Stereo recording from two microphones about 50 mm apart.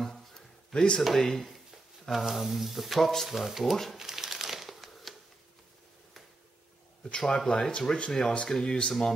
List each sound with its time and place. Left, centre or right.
0.7 s speech: centre
2.1 s speech: centre
4.0 s crumpling: centre
7.1 s speech: centre